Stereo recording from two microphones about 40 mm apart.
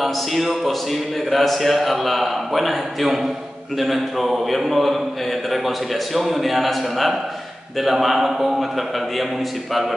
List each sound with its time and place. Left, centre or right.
0.0 s speech: centre